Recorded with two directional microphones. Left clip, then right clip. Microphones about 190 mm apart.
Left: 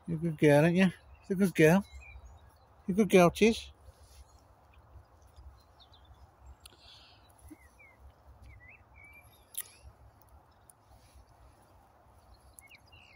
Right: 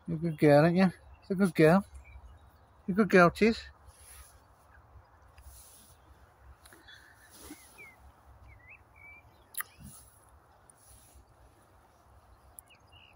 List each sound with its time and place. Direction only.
0.1 s speech: 5° right (ahead or behind)
3.1 s speech: 40° right (ahead or behind)